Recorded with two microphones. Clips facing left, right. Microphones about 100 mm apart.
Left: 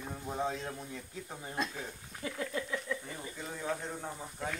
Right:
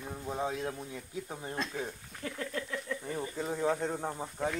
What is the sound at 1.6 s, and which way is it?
Speech, 10° left (ahead or behind).